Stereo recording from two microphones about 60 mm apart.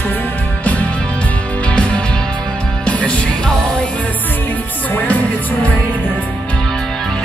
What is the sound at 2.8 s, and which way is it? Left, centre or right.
Music, centre.